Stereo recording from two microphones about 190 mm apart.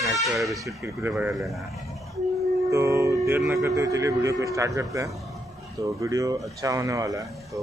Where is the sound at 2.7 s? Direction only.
15° right (ahead or behind).